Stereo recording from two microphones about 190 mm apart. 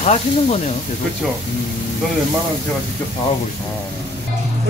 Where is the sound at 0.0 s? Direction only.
35° left (ahead or behind).